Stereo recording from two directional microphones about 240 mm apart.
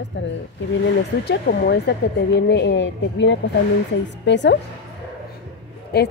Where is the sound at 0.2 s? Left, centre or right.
Left.